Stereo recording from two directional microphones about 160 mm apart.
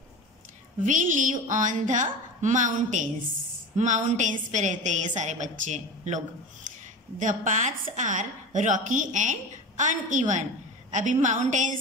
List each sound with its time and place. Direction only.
0.8 s a woman's voice: 55° right (ahead or behind)